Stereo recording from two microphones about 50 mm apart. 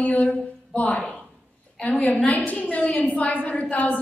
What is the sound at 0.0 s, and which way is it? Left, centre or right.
Speech, left.